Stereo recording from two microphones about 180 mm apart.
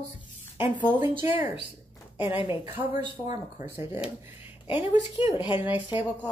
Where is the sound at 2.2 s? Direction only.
30° left (ahead or behind).